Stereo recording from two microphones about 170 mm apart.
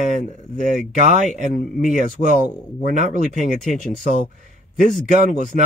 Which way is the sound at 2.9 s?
45° right (ahead or behind).